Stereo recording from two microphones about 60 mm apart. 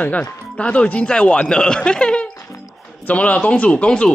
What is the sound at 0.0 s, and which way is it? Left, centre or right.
Speech, left.